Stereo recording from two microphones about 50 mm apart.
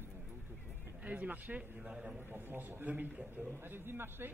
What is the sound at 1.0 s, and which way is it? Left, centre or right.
A man's voice, right.